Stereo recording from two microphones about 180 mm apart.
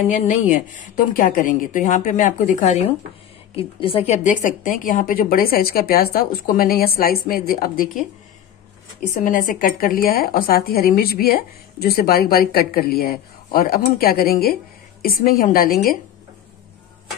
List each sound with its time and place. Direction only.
0.1 s a woman's voice: 40° left (ahead or behind)
3.5 s a woman's voice: 30° left (ahead or behind); by 8.0 s 55° left (ahead or behind)
9.0 s speech: 45° left (ahead or behind)